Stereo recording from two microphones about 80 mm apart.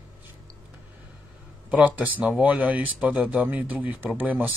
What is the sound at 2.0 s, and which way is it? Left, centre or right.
Speech, right.